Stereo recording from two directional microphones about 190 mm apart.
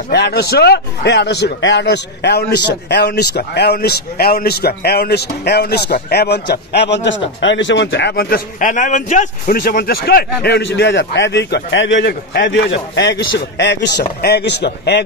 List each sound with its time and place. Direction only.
0.1 s a man's voice: 60° left (ahead or behind)